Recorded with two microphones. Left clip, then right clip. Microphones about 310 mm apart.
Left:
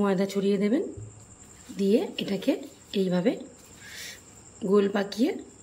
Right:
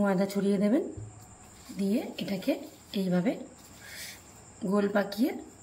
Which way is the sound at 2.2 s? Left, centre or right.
Centre.